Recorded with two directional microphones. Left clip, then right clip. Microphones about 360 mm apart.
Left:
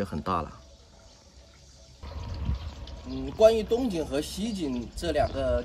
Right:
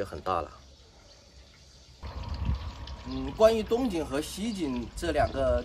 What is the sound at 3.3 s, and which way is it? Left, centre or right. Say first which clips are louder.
Speech: left 2 dB; centre.